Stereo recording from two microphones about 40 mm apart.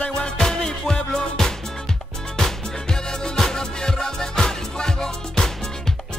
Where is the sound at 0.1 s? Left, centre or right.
Centre.